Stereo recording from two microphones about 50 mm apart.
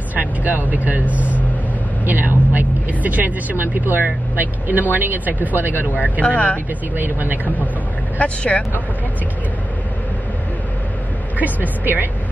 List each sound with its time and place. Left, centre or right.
0.1 s speech: right
5.9 s speech: left
7.0 s speech: right
7.4 s speech: left
11.8 s speech: right